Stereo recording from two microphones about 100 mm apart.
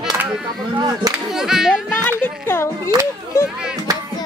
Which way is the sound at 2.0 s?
20° left (ahead or behind).